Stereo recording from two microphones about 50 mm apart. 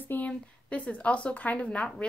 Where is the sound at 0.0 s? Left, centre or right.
Left.